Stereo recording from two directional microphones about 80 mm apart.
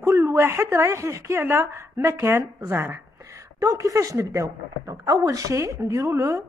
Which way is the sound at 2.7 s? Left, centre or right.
Right.